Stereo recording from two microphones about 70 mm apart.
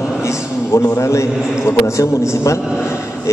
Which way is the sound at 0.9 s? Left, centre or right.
Left.